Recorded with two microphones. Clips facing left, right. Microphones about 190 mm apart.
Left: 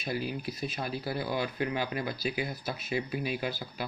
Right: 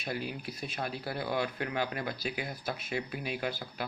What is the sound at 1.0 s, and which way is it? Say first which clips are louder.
Speech: even; 55° right (ahead or behind).